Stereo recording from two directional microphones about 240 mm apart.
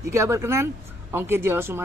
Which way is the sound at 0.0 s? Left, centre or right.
Centre.